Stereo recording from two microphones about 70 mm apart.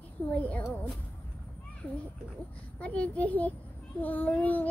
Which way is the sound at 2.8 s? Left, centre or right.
Centre.